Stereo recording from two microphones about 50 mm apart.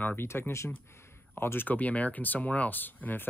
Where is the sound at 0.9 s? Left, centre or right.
Left.